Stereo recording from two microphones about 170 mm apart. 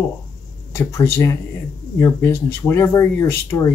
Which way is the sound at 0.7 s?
15° left (ahead or behind).